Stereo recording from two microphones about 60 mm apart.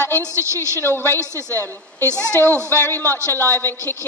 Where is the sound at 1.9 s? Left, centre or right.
Right.